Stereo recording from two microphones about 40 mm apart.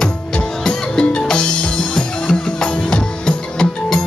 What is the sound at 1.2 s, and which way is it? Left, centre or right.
Music, left.